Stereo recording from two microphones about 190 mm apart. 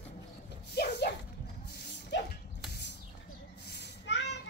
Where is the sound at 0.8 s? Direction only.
55° left (ahead or behind).